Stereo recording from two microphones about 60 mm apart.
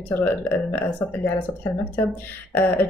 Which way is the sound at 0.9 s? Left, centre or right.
Left.